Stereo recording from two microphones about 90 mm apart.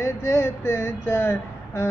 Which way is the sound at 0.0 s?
35° left (ahead or behind).